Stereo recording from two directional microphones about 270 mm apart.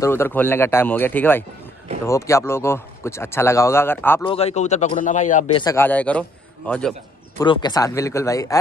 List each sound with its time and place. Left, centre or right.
0.0 s speech: centre
4.3 s speech: left
5.6 s a man's voice: centre
7.4 s speech: centre